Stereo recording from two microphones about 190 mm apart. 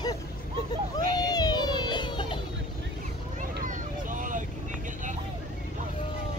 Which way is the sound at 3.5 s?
45° right (ahead or behind).